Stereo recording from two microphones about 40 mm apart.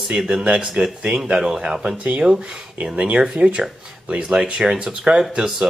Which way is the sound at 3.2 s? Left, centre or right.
Right.